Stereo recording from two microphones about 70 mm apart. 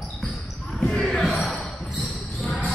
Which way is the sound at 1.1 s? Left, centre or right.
Centre.